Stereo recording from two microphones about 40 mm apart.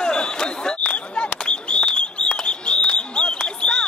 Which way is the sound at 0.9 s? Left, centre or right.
Left.